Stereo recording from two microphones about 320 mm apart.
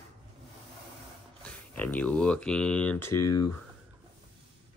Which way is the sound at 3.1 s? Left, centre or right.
Left.